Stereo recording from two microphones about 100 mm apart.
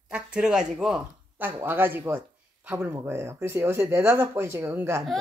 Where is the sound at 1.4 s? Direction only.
20° right (ahead or behind).